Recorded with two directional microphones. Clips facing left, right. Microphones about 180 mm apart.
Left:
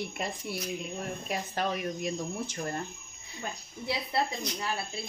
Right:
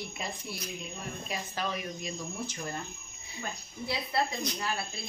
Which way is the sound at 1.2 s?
55° left (ahead or behind).